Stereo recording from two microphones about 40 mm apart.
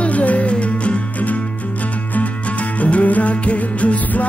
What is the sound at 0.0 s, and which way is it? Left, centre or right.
Music, left.